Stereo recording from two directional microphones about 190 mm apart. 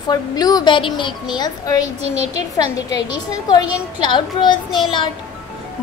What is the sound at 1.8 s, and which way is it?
Speech, 35° right (ahead or behind).